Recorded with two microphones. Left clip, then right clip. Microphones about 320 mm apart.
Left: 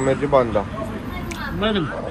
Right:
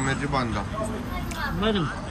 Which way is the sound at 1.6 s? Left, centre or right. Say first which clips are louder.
Left 4 dB; centre.